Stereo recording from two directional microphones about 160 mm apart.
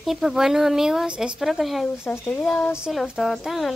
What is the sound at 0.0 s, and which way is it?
Speech, centre (ahead or behind).